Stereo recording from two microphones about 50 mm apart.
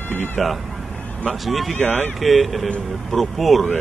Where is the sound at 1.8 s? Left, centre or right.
Centre.